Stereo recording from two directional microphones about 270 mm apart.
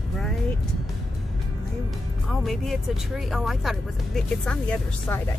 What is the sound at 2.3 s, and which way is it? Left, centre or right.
Speech, centre.